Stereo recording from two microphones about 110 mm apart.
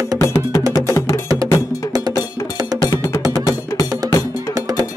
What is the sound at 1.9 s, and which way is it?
Music, 35° right (ahead or behind).